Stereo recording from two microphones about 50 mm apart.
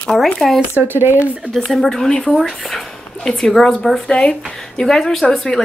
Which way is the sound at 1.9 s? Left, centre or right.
Centre.